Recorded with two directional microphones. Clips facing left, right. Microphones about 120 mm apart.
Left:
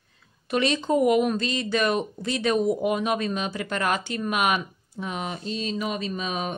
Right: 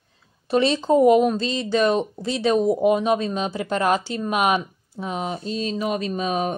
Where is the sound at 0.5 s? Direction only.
35° right (ahead or behind).